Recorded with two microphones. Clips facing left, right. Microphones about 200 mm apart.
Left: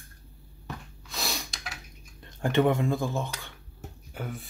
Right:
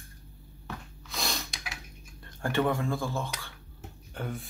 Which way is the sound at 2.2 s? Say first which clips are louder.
Left 4 dB; 20° left (ahead or behind).